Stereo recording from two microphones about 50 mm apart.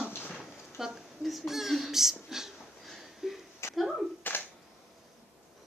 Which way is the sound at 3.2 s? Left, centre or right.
Centre.